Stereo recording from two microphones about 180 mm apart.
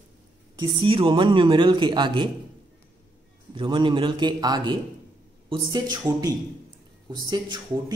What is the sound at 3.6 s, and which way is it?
A man's voice, 25° right (ahead or behind).